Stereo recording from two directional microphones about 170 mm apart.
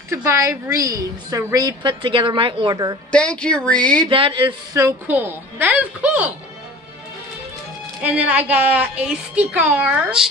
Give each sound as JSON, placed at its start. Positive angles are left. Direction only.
{"t": 0.1, "sound": "a woman's voice", "side_deg": -15}
{"t": 3.1, "sound": "speech", "side_deg": 5}
{"t": 4.1, "sound": "a woman's voice", "side_deg": -30}
{"t": 4.7, "sound": "a woman's voice", "side_deg": -15}
{"t": 8.0, "sound": "a woman's voice", "side_deg": -10}